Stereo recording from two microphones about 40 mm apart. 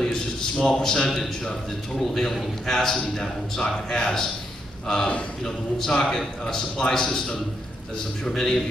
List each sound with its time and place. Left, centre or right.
0.0 s a sound: centre
2.0 s a man's voice: centre
5.4 s a man's voice: centre